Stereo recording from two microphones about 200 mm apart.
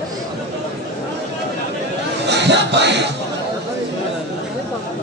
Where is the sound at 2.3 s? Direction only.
60° right (ahead or behind).